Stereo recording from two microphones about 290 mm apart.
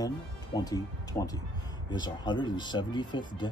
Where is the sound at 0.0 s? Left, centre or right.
Centre.